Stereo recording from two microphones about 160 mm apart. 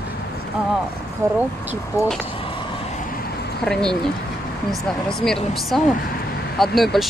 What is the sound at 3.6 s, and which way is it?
Speech, 5° left (ahead or behind).